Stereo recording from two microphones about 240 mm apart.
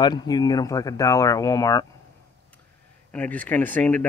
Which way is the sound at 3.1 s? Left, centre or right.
Centre.